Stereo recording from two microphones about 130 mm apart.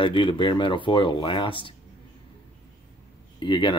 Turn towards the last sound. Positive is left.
turn(degrees=40)  # may be behind; listen again after turning